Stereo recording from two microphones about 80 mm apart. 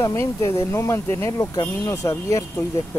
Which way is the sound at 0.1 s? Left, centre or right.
Left.